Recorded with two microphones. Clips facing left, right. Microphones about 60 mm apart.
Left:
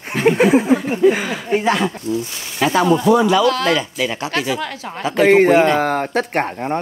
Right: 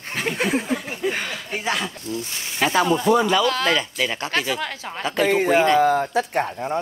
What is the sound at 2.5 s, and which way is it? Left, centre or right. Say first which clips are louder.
Speech: left 4 dB; left.